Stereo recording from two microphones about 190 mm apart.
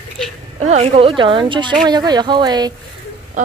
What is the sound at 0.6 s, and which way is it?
A woman's voice, 35° right (ahead or behind).